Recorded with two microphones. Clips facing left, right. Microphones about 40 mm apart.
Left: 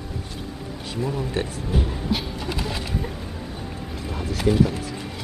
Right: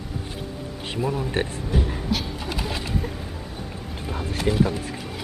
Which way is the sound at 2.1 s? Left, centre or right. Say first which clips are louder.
Left 1 dB; centre.